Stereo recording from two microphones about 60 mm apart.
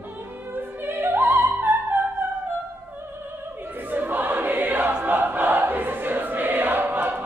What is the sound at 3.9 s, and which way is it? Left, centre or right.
Choir, right.